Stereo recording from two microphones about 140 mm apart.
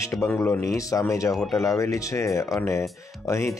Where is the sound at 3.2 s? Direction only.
25° left (ahead or behind).